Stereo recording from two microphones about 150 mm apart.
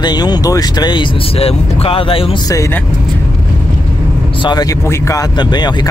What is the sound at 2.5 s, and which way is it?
Speech, 20° left (ahead or behind).